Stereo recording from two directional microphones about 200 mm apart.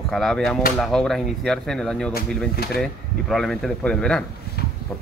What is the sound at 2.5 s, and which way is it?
Speech, 50° left (ahead or behind).